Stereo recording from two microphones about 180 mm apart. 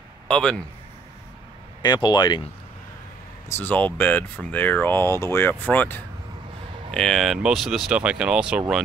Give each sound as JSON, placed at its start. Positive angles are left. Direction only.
{"t": 0.3, "sound": "speech", "side_deg": 5}
{"t": 1.8, "sound": "speech", "side_deg": 25}
{"t": 3.4, "sound": "speech", "side_deg": 10}